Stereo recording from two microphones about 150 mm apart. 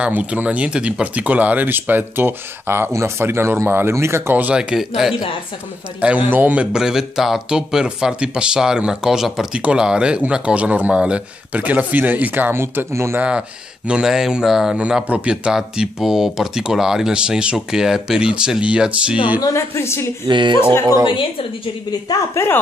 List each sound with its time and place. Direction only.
0.0 s speech: 10° right (ahead or behind)
19.4 s a woman's voice: 20° left (ahead or behind)
20.2 s a woman's voice: 30° right (ahead or behind)
21.1 s speech: 35° left (ahead or behind)
22.1 s a woman's voice: 15° left (ahead or behind)